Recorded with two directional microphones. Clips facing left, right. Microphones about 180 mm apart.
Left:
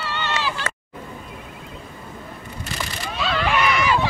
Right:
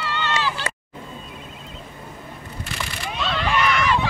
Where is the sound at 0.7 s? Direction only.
10° right (ahead or behind).